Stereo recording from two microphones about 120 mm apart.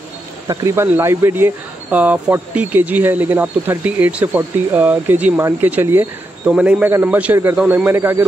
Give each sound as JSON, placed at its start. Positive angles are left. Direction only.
{"t": 0.5, "sound": "speech", "side_deg": -20}